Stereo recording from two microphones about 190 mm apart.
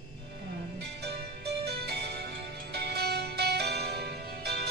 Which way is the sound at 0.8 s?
60° right (ahead or behind).